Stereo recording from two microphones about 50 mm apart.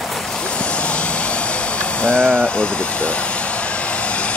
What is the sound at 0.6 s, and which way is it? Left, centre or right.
Vehicle, left.